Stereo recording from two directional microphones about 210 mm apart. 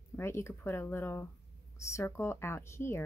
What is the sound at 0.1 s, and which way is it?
Speech, 10° left (ahead or behind).